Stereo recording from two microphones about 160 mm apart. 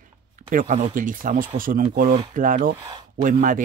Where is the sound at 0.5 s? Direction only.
55° right (ahead or behind).